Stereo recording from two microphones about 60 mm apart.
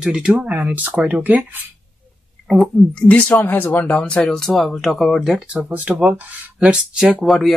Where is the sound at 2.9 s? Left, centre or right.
Left.